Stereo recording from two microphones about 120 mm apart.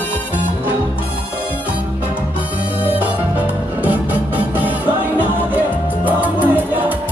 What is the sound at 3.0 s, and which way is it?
Music, 15° right (ahead or behind).